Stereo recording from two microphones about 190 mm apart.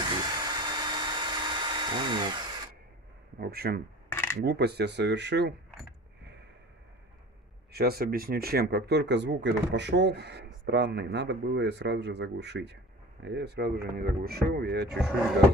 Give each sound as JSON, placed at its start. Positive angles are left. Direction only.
{"t": 0.0, "sound": "a sound", "side_deg": -25}
{"t": 3.3, "sound": "speech", "side_deg": -55}
{"t": 4.1, "sound": "a sound", "side_deg": 10}
{"t": 4.5, "sound": "speech", "side_deg": -60}
{"t": 7.7, "sound": "speech", "side_deg": -55}
{"t": 14.9, "sound": "speech", "side_deg": 0}